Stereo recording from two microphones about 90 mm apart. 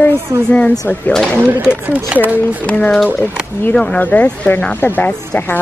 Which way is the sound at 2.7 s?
10° left (ahead or behind).